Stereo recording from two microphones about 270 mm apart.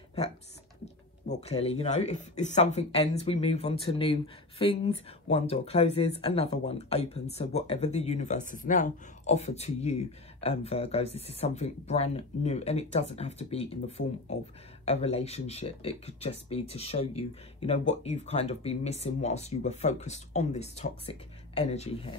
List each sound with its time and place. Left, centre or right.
1.3 s speech: left